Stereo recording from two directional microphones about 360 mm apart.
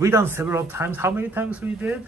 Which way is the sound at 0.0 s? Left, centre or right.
Centre.